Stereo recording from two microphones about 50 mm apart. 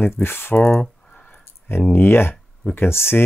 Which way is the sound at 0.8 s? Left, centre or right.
Left.